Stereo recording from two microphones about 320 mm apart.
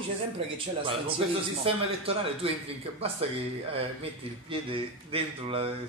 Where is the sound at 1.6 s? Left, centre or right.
Centre.